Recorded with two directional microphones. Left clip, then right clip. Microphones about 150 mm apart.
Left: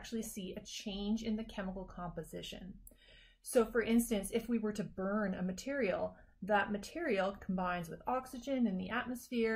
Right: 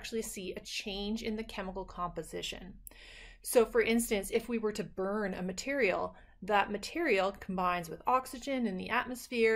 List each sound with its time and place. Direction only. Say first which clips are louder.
0.0 s a woman's voice: right 6 dB; 15° right (ahead or behind)